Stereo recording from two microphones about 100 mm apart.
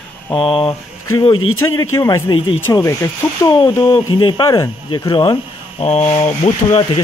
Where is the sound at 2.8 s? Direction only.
30° left (ahead or behind).